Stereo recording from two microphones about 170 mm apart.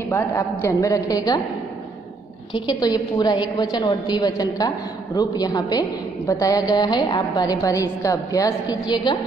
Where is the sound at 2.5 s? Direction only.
25° left (ahead or behind).